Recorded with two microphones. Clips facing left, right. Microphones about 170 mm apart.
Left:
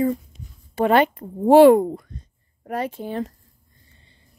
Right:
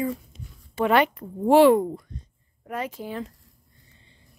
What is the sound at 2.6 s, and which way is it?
Speech, 35° left (ahead or behind).